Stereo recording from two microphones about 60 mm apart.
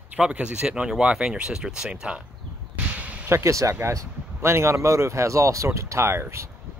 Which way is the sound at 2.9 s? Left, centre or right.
Right.